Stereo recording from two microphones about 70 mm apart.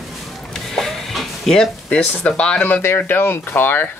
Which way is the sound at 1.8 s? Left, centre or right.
Centre.